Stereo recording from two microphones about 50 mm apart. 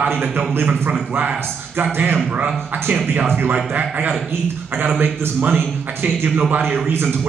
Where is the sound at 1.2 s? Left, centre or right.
Right.